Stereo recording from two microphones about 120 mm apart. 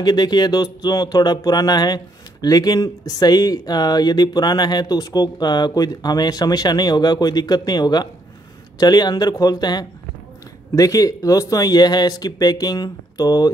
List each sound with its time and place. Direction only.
0.0 s speech: 35° left (ahead or behind)